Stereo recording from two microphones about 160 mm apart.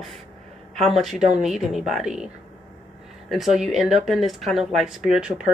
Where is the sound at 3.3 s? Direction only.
Centre (ahead or behind).